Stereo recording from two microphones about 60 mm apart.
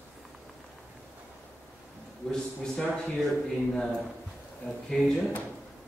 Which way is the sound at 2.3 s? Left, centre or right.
Centre.